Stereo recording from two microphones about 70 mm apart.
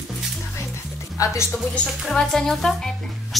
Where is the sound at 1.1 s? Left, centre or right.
Left.